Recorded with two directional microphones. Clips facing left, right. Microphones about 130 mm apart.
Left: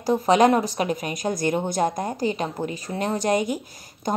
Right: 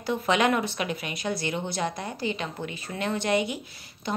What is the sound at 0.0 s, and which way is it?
Speech, 40° left (ahead or behind).